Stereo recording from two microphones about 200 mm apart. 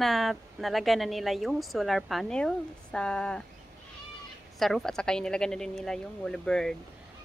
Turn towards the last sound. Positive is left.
turn(degrees=0)  # may be behind; listen again after turning